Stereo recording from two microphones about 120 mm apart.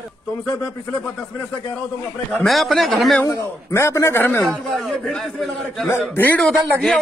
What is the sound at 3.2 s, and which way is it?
A man's voice, 20° left (ahead or behind).